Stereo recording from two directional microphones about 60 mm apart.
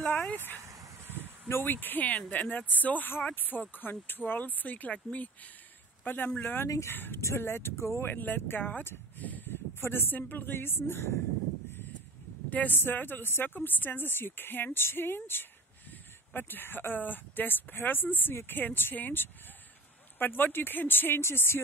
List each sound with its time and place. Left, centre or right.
0.0 s vehicle: left
1.0 s a sound: right
1.5 s speech: left
8.0 s speech: left
12.4 s speech: left
18.3 s speech: left
18.6 s speech: left